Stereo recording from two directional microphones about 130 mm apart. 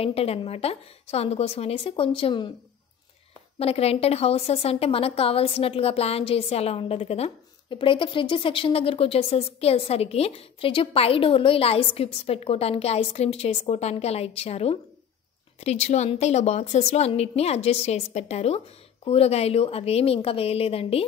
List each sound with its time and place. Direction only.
0.0 s a woman's voice: 50° left (ahead or behind)
3.5 s a woman's voice: 50° left (ahead or behind)